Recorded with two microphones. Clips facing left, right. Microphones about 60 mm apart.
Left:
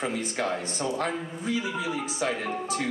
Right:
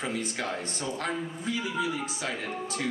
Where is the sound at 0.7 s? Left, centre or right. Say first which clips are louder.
Left 3 dB; left.